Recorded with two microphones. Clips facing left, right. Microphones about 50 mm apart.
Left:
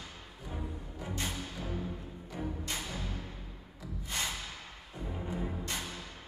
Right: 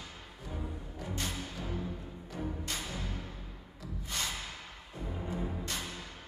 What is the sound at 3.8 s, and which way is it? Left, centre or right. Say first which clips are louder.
Music: left 1 dB; left.